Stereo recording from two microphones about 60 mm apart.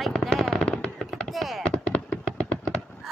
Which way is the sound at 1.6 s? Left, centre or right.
Centre.